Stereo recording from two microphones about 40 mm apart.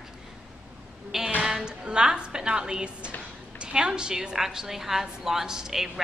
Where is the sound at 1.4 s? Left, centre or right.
Centre.